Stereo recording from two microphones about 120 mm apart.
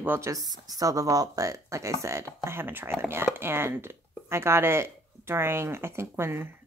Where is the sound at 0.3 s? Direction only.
30° right (ahead or behind).